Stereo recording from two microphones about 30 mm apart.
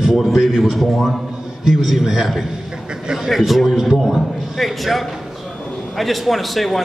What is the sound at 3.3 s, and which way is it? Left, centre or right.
Speech, centre.